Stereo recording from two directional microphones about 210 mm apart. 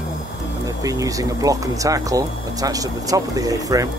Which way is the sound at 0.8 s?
15° right (ahead or behind).